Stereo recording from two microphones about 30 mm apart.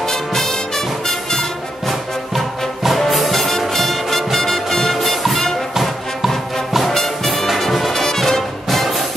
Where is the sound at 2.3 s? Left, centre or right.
Centre.